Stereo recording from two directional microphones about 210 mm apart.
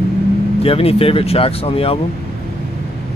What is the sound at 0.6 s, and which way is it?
Speech, 25° left (ahead or behind).